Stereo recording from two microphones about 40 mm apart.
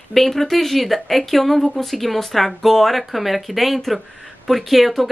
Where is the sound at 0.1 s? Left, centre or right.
Centre.